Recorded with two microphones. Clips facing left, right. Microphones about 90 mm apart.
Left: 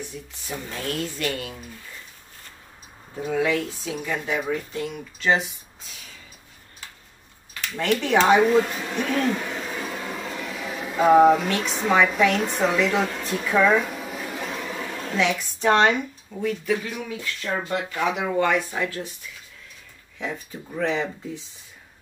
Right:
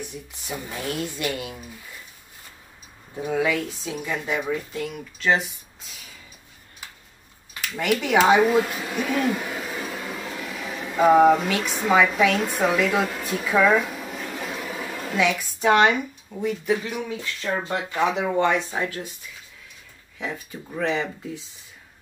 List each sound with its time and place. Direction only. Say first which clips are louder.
0.0 s a woman's voice: even; 15° right (ahead or behind)
3.3 s a woman's voice: even; 15° right (ahead or behind)
4.2 s speech: even; 5° left (ahead or behind)
7.6 s speech: even; 10° right (ahead or behind)
20.2 s speech: even; centre (ahead or behind)